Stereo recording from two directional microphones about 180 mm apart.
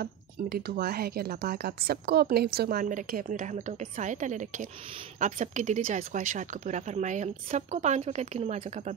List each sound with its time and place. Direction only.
0.0 s speech: 60° right (ahead or behind); by 8.9 s 40° right (ahead or behind)